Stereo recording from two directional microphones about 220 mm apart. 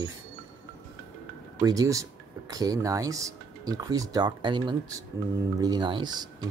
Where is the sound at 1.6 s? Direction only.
15° right (ahead or behind).